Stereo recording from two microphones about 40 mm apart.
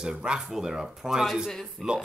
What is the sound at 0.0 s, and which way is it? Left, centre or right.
Speech, centre.